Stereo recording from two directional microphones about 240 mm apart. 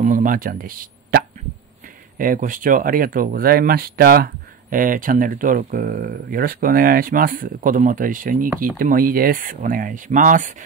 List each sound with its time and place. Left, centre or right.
0.0 s speech: right